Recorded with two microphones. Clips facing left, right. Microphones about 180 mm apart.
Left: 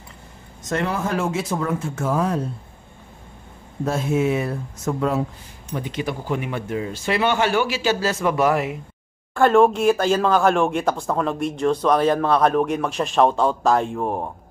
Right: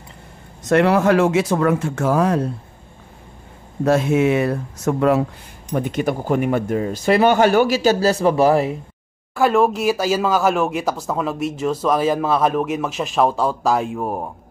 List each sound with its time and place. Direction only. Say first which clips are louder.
0.7 s speech: right 9 dB; 70° right (ahead or behind)
3.8 s speech: right 5 dB; 75° right (ahead or behind)
5.7 s speech: right 6 dB; 45° right (ahead or behind); by 8.7 s 30° right (ahead or behind)
9.3 s speech: left 1 dB; 5° right (ahead or behind)